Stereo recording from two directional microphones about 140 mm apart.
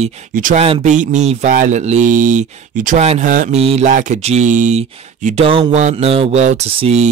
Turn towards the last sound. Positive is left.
turn(degrees=-45)  # may be behind; listen again after turning